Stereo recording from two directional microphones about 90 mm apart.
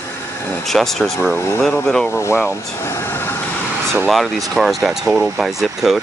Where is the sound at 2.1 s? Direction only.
30° left (ahead or behind).